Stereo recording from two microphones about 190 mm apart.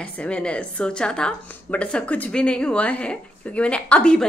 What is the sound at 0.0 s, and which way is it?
A woman's voice, 5° left (ahead or behind).